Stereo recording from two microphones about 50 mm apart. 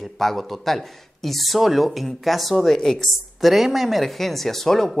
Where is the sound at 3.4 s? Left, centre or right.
Centre.